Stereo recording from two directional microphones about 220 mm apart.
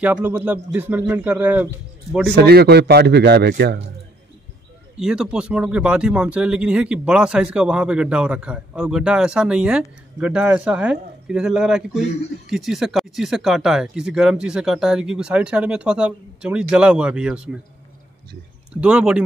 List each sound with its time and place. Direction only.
0.0 s a man's voice: 5° right (ahead or behind)
2.3 s a man's voice: 45° right (ahead or behind)
4.9 s speech: 5° right (ahead or behind)
18.7 s speech: 5° right (ahead or behind)